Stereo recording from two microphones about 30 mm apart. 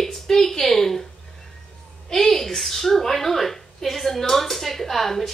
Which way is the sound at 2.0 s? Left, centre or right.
Centre.